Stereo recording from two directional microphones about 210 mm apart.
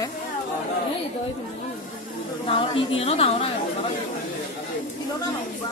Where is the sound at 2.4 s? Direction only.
25° left (ahead or behind).